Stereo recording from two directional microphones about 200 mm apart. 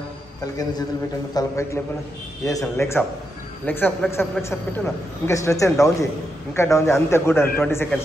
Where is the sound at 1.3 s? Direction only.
15° left (ahead or behind).